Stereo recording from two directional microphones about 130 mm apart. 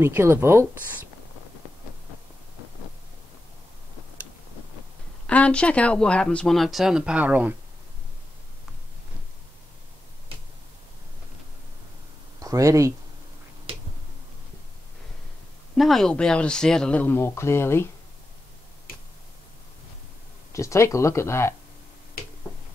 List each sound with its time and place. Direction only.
0.0 s speech: 20° right (ahead or behind)
5.2 s speech: 10° left (ahead or behind); by 7.5 s 10° right (ahead or behind)
12.4 s speech: 25° right (ahead or behind)
15.7 s speech: centre (ahead or behind); by 17.8 s 20° left (ahead or behind)
20.5 s speech: 25° left (ahead or behind)